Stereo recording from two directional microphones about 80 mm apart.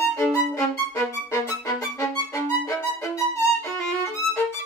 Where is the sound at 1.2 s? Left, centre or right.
Left.